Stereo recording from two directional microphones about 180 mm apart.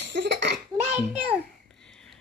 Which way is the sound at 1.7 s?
5° left (ahead or behind).